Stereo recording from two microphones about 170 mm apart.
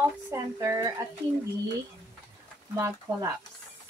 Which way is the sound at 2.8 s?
20° right (ahead or behind).